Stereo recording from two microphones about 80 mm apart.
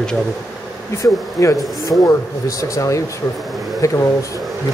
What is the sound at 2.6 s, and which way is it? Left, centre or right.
Speech, left.